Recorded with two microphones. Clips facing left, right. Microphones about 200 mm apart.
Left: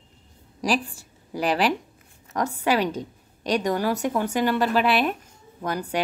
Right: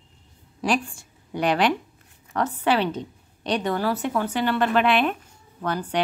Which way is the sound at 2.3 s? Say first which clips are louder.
Right 1 dB; 10° left (ahead or behind).